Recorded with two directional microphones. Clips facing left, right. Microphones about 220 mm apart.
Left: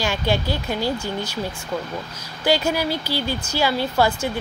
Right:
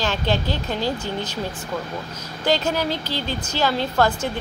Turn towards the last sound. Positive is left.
turn(degrees=10)  # may be behind; listen again after turning